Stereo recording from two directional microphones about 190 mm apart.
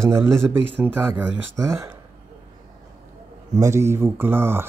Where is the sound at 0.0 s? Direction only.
15° right (ahead or behind).